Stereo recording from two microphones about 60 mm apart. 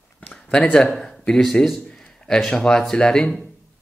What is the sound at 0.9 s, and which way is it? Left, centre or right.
Speech, centre.